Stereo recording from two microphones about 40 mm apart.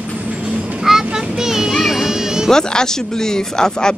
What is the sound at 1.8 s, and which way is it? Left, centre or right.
Music, centre.